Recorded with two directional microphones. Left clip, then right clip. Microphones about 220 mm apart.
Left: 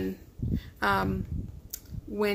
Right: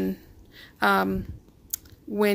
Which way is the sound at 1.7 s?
45° right (ahead or behind).